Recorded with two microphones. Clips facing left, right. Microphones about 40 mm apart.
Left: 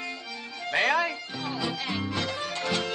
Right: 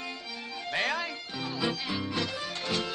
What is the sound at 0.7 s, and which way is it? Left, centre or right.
Music, left.